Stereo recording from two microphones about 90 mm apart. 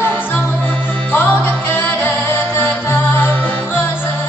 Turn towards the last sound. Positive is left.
turn(degrees=25)  # may be behind; listen again after turning